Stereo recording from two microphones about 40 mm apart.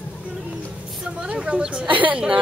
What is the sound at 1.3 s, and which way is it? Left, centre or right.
Speech, right.